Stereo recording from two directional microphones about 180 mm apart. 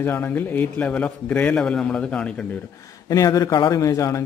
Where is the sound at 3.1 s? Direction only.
20° left (ahead or behind).